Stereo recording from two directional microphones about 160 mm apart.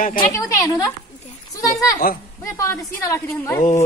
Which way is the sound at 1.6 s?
20° left (ahead or behind).